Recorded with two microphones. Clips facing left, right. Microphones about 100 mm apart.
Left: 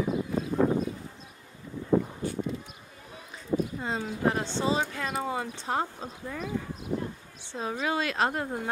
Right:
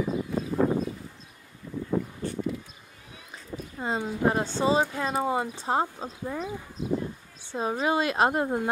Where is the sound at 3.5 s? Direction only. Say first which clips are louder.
Left 11 dB; 65° left (ahead or behind).